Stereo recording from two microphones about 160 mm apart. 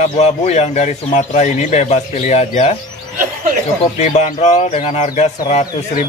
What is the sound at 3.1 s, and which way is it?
Snicker, 55° right (ahead or behind).